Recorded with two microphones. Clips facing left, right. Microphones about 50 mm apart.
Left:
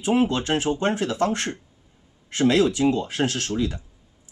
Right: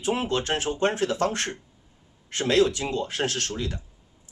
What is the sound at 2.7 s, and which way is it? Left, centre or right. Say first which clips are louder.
Speech: left 6 dB; left.